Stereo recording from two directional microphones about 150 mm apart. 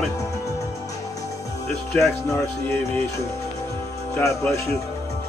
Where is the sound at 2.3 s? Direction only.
15° left (ahead or behind).